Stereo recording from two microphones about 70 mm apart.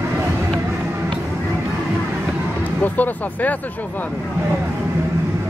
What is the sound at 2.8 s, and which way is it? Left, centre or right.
Music, left.